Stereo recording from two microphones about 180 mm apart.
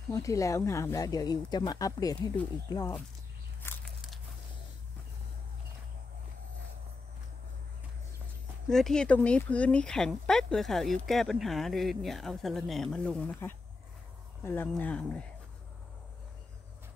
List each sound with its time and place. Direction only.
0.1 s speech: 15° left (ahead or behind)
3.6 s biting: 15° left (ahead or behind)
8.6 s speech: 5° left (ahead or behind)